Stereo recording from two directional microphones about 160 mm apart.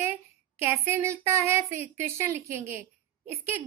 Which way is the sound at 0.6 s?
15° right (ahead or behind).